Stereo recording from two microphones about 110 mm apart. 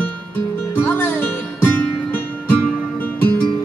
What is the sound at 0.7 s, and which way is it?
Music, 20° left (ahead or behind).